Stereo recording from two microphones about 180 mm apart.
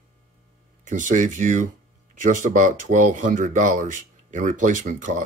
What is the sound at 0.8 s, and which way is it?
Speech, 45° right (ahead or behind).